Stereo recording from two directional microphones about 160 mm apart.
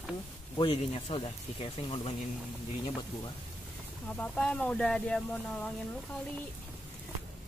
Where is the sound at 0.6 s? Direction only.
40° left (ahead or behind).